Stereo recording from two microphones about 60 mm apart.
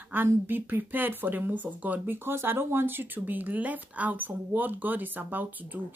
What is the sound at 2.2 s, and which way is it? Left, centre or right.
Speech, right.